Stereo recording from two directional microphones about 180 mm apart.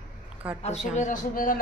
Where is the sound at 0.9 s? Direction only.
45° left (ahead or behind).